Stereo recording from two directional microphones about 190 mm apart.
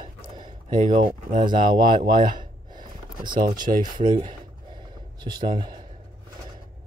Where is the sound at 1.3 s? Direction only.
45° right (ahead or behind).